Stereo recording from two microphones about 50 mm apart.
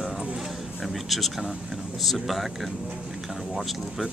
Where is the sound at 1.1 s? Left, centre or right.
Centre.